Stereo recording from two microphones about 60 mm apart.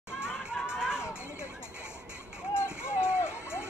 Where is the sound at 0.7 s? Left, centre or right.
Centre.